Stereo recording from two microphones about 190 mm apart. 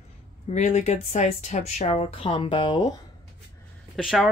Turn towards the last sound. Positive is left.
turn(degrees=0)  # may be behind; listen again after turning